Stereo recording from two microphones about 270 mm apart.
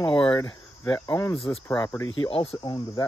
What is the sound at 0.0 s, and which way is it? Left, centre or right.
Speech, centre.